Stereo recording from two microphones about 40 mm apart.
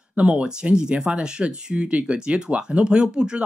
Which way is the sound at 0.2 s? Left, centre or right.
Right.